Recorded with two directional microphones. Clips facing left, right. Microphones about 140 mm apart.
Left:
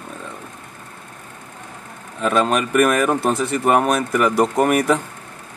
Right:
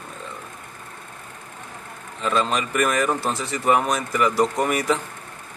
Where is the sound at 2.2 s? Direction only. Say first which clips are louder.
Left 5 dB; 60° left (ahead or behind).